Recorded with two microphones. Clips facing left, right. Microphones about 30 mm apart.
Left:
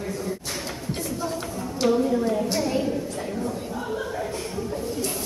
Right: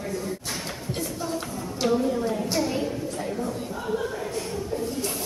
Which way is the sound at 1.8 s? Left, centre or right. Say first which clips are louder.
Left 2 dB; centre.